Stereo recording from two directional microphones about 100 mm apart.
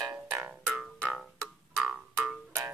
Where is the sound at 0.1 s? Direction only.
20° right (ahead or behind).